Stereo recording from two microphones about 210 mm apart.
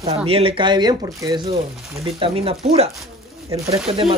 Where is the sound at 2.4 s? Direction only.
30° right (ahead or behind).